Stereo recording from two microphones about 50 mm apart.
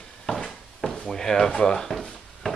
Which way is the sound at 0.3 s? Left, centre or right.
Centre.